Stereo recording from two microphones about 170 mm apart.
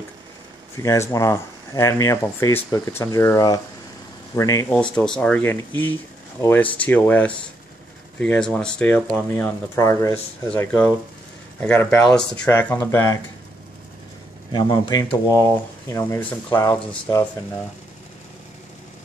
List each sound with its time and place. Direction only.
0.8 s speech: 15° left (ahead or behind)
4.9 s speech: 5° left (ahead or behind)
14.5 s speech: 30° left (ahead or behind)